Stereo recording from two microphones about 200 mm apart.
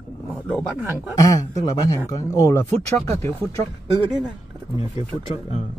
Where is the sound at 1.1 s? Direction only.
15° left (ahead or behind).